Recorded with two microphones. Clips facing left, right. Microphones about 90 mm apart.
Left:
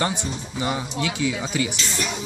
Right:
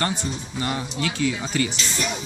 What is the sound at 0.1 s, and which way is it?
Speech, 15° left (ahead or behind).